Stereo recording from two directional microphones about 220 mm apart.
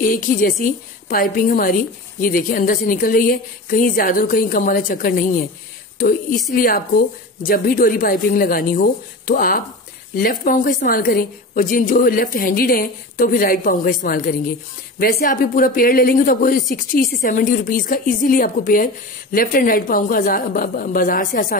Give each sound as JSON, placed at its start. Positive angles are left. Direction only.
{"t": 0.0, "sound": "a woman's voice", "side_deg": 40}
{"t": 6.5, "sound": "a woman's voice", "side_deg": 40}
{"t": 15.0, "sound": "a woman's voice", "side_deg": 40}